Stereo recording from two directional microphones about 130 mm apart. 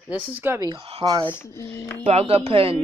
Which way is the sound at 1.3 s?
20° left (ahead or behind).